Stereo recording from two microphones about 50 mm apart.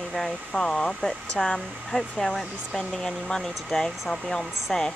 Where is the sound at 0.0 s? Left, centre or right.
Centre.